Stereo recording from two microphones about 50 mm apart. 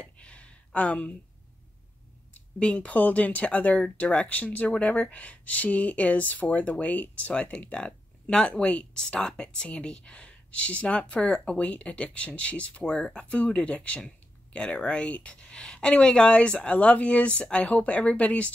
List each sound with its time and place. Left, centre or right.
0.0 s a sound: left
0.7 s speech: left
2.6 s speech: left